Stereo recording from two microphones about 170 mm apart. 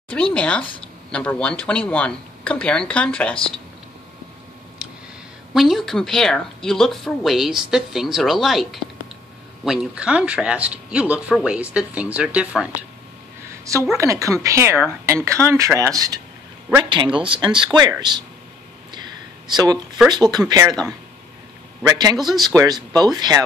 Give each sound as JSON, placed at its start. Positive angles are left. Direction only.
{"t": 0.1, "sound": "speech", "side_deg": 5}
{"t": 5.5, "sound": "a woman's voice", "side_deg": 0}
{"t": 13.9, "sound": "speech", "side_deg": -20}
{"t": 19.5, "sound": "speech", "side_deg": -25}
{"t": 21.8, "sound": "speech", "side_deg": -20}
{"t": 22.1, "sound": "a woman's voice", "side_deg": 0}
{"t": 22.4, "sound": "speech", "side_deg": -20}